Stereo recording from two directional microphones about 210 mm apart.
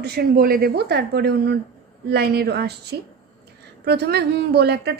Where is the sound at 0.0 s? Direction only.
50° right (ahead or behind).